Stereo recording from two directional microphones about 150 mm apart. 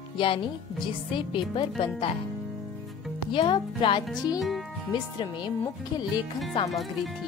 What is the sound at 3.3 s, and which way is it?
Speech, 35° left (ahead or behind).